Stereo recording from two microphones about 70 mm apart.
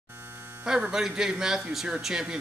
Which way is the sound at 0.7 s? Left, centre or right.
Centre.